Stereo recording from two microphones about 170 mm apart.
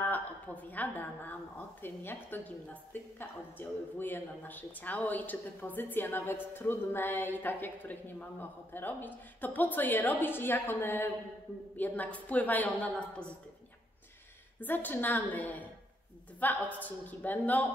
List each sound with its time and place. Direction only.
0.0 s a woman's voice: 10° left (ahead or behind)
14.6 s a woman's voice: 10° left (ahead or behind)